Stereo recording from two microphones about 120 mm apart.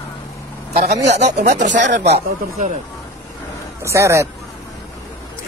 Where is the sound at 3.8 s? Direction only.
25° right (ahead or behind).